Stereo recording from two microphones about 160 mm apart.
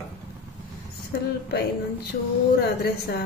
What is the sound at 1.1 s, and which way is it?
A woman's voice, 80° left.